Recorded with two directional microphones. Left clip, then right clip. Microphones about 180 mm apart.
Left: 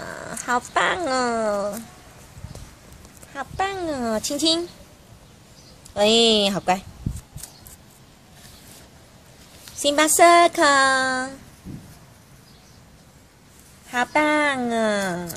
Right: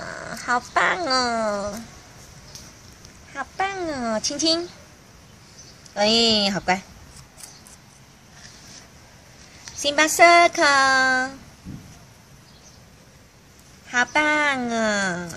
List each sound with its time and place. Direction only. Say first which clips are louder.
0.0 s dog: even; 25° left (ahead or behind)
0.7 s speech: right 1 dB; 25° left (ahead or behind)
3.3 s speech: even; 30° left (ahead or behind)
5.9 s speech: left 2 dB; 25° left (ahead or behind)
9.8 s speech: even; 25° left (ahead or behind)
13.8 s speech: even; 20° left (ahead or behind)